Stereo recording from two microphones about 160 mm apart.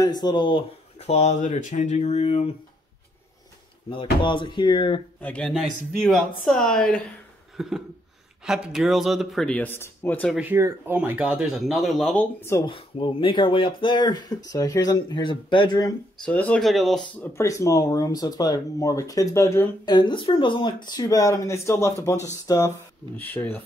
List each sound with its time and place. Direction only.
0.0 s speech: 25° left (ahead or behind); by 2.5 s 40° left (ahead or behind)
3.9 s speech: 30° left (ahead or behind)
5.2 s speech: 5° left (ahead or behind)
10.3 s speech: 10° right (ahead or behind)
12.4 s speech: 15° left (ahead or behind)
12.6 s speech: 30° left (ahead or behind)
16.2 s speech: 5° left (ahead or behind)
17.4 s speech: 20° left (ahead or behind)
23.1 s speech: 10° left (ahead or behind)